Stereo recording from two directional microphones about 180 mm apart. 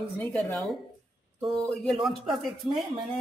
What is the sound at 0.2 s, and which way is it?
Speech, 5° left (ahead or behind).